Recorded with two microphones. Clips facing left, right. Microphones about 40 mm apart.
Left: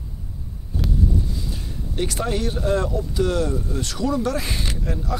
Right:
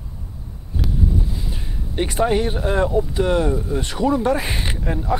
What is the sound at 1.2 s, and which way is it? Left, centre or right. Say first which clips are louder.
Speech: right 1 dB; right.